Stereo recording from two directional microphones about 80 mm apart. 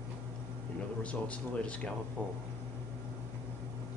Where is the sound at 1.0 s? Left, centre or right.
Centre.